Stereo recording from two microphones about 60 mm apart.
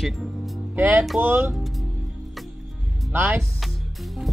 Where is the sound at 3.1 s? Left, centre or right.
Right.